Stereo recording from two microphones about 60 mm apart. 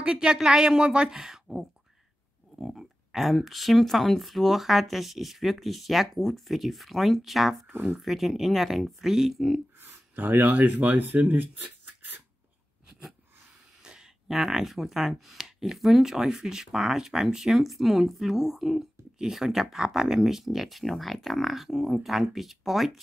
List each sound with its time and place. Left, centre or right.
0.0 s a woman's voice: centre
9.8 s speech: right
13.8 s speech: centre